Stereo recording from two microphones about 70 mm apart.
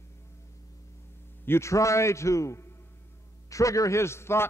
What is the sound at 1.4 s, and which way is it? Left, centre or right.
A man's voice, left.